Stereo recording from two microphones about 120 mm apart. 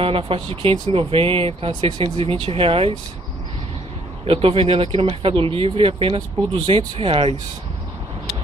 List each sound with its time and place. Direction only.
0.0 s speech: 50° right (ahead or behind)
4.2 s speech: 50° right (ahead or behind)